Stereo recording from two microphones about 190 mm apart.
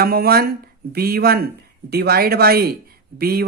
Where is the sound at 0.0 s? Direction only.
55° right (ahead or behind).